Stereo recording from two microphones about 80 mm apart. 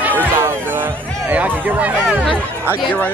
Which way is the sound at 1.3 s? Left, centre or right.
Centre.